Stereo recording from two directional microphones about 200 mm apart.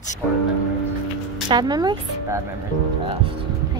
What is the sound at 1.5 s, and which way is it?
Speech, 20° right (ahead or behind).